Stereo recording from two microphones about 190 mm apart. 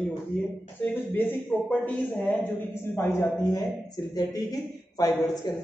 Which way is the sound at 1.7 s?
10° left (ahead or behind).